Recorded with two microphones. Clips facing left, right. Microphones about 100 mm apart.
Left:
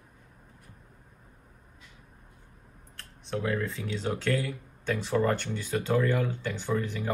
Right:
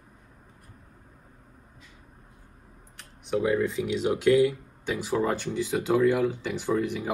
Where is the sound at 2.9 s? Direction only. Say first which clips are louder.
Right 6 dB; 15° right (ahead or behind).